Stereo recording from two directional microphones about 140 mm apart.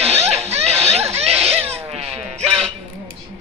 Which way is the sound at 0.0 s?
50° right (ahead or behind).